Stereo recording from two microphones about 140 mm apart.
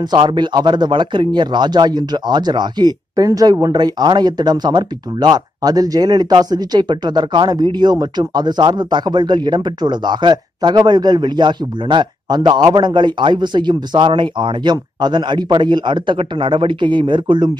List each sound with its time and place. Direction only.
0.0 s speech: 30° right (ahead or behind)